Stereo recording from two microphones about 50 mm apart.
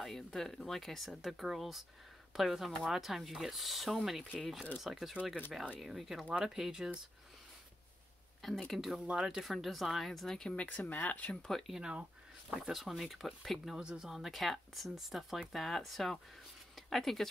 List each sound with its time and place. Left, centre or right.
0.0 s speech: centre
8.4 s speech: centre
9.0 s speech: centre
9.4 s speech: centre
10.5 s speech: left
11.4 s speech: centre
11.7 s speech: centre
13.7 s speech: centre
14.0 s speech: centre